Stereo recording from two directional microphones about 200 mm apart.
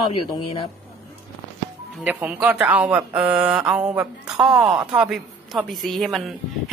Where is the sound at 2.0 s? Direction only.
10° right (ahead or behind).